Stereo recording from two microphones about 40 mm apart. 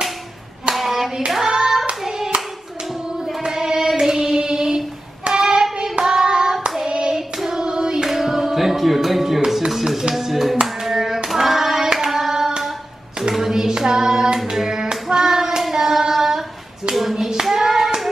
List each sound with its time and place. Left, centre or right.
0.7 s hands: centre
3.4 s child singing: centre
5.4 s hands: centre
7.2 s hands: centre
7.6 s hands: centre
8.1 s music: centre
9.7 s clapping: centre
10.6 s hands: centre
13.3 s child singing: centre
17.1 s clapping: centre